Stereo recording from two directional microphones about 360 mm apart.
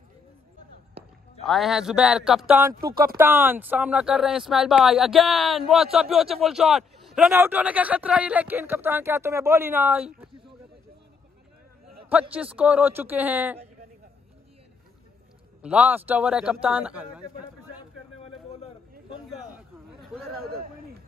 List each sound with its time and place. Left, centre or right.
1.4 s speech: centre
2.8 s speech: right
3.2 s speech: centre
12.1 s speech: centre
15.6 s speech: centre
19.2 s a sound: centre